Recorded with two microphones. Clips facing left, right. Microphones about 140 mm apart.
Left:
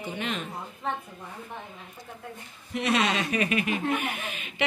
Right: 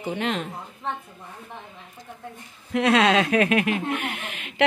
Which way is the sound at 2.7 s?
90° right.